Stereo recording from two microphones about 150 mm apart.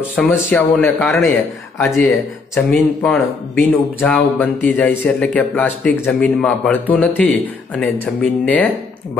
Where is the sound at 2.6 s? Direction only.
5° left (ahead or behind).